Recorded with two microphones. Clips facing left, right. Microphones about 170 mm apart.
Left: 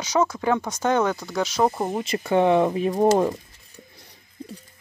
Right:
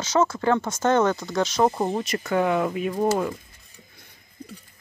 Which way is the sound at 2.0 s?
30° left (ahead or behind).